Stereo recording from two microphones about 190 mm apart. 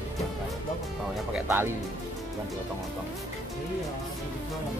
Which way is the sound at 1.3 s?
10° right (ahead or behind).